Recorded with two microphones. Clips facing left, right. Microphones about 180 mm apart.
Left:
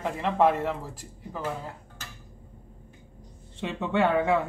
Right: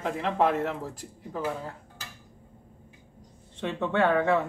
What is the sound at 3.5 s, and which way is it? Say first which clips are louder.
Speech: even; 10° left (ahead or behind).